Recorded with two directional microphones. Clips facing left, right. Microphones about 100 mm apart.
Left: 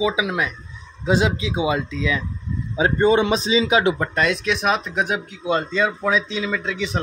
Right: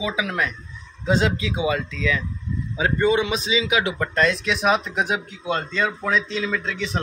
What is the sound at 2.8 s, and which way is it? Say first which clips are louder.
A man's voice: left 3 dB; 30° left (ahead or behind).